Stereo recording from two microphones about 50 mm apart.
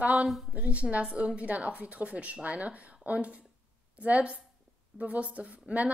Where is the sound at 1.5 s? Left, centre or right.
Right.